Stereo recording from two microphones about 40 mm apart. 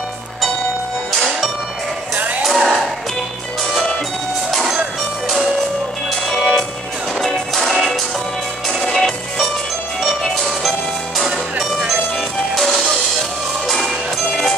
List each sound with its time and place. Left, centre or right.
2.1 s music: right
2.4 s music: centre
6.0 s music: centre
13.8 s music: centre